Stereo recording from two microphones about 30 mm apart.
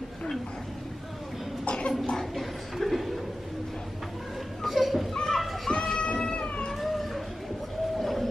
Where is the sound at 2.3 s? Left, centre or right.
Centre.